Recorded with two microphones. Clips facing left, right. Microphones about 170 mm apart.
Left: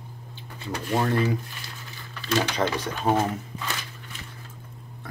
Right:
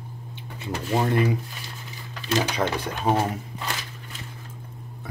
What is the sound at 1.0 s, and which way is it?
Speech, 20° right (ahead or behind).